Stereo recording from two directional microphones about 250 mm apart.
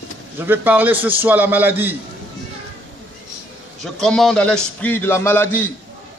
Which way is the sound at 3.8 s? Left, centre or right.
Centre.